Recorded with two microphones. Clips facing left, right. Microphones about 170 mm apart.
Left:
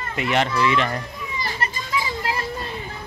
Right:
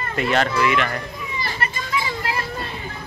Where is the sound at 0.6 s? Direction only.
30° left (ahead or behind).